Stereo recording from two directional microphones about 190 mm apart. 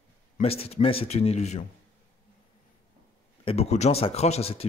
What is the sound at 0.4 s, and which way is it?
Speech, 30° left (ahead or behind).